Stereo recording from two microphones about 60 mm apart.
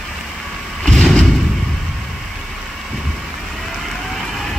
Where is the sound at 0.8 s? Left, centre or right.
Centre.